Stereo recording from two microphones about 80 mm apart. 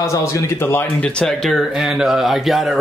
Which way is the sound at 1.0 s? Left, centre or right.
Centre.